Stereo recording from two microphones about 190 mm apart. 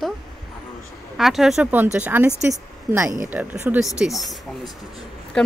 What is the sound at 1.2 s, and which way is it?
A woman's voice, centre (ahead or behind).